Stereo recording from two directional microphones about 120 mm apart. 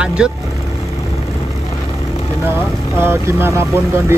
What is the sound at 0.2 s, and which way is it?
Speech, 5° right (ahead or behind).